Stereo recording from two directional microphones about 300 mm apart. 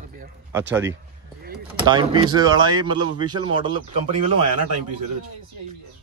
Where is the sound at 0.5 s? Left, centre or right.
Centre.